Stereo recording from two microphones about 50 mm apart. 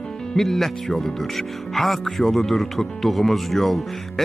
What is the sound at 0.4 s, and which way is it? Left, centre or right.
Speech, centre.